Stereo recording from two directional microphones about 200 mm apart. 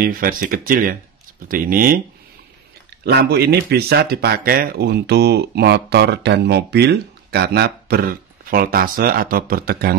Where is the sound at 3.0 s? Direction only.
55° right (ahead or behind).